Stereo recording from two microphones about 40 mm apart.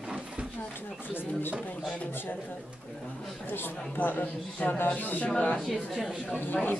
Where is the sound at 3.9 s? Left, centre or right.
Left.